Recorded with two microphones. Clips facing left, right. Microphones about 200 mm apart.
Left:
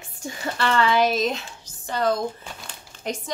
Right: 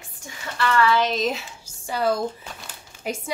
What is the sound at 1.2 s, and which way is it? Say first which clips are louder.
A woman's voice: even; 5° right (ahead or behind).